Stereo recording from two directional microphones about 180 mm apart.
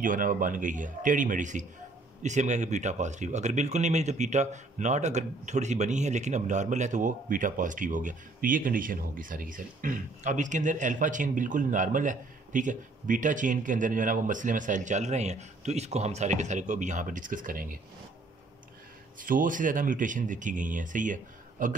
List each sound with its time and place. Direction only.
0.0 s speech: 50° right (ahead or behind)
19.1 s speech: 50° right (ahead or behind)